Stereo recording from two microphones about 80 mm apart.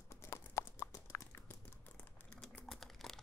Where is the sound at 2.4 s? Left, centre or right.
Centre.